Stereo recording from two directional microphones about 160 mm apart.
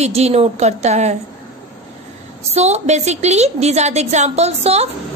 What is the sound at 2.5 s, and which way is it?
A woman's voice, 45° right (ahead or behind).